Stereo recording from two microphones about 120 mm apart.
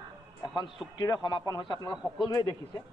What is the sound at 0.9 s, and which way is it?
A man's voice, 35° left (ahead or behind).